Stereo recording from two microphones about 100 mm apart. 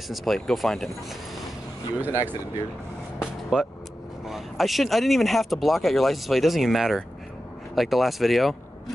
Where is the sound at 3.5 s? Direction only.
5° right (ahead or behind).